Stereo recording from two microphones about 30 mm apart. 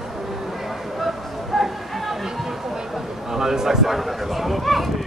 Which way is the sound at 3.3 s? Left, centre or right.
Centre.